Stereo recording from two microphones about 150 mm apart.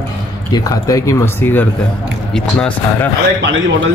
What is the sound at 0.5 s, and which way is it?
Speech, 25° left (ahead or behind).